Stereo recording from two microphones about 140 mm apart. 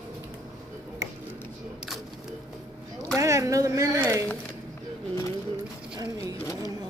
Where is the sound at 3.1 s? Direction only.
20° right (ahead or behind).